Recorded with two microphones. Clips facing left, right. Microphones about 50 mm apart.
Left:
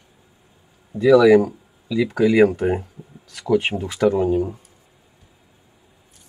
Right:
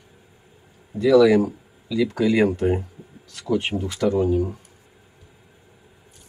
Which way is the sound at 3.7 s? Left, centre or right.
Left.